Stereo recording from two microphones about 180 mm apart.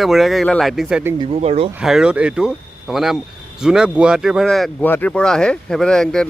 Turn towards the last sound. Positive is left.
turn(degrees=5)  # may be behind; listen again after turning